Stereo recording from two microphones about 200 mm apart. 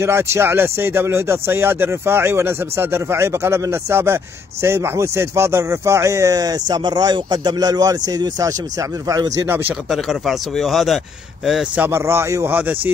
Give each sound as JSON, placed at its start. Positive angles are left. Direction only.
{"t": 0.0, "sound": "speech", "side_deg": -15}
{"t": 9.5, "sound": "speech", "side_deg": 0}